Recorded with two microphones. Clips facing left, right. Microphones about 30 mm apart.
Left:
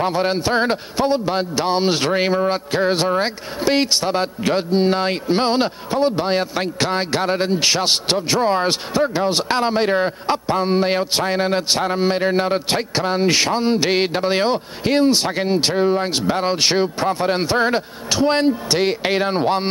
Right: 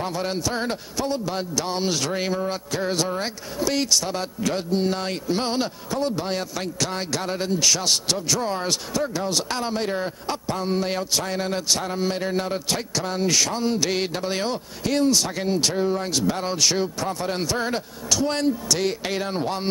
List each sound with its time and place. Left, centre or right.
0.0 s a man's voice: left